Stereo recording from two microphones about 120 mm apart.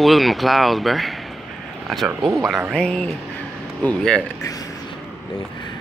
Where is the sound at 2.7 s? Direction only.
5° left (ahead or behind).